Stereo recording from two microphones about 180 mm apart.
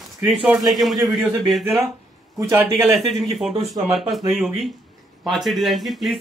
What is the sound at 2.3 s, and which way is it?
Speech, 15° right (ahead or behind).